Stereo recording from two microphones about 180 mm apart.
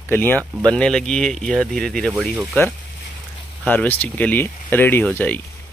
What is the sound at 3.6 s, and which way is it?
Speech, 10° left (ahead or behind).